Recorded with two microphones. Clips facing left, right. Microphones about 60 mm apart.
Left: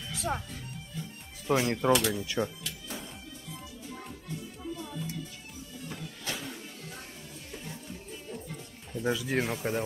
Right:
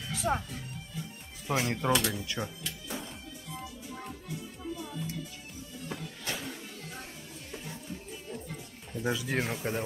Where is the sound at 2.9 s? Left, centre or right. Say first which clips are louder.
Right 3 dB; centre.